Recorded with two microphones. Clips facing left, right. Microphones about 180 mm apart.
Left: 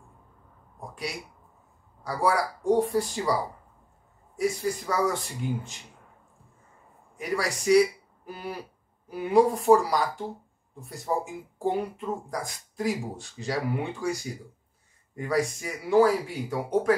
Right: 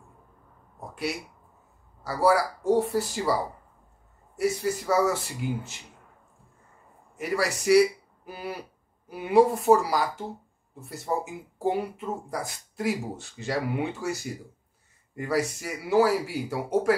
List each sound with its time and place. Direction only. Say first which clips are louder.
0.7 s a sound: right 4 dB; 5° right (ahead or behind)
2.0 s speech: right 3 dB; 5° right (ahead or behind)
4.4 s speech: right 1 dB; 5° right (ahead or behind)
7.2 s speech: right 2 dB; 5° right (ahead or behind)